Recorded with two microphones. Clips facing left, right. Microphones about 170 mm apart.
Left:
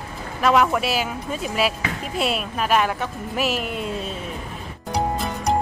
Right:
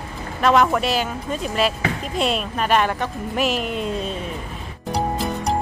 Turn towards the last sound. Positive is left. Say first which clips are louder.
# right 1 dB
turn(degrees=0)  # may be behind; listen again after turning